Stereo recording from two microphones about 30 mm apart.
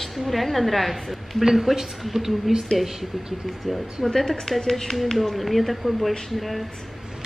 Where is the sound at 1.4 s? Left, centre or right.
Centre.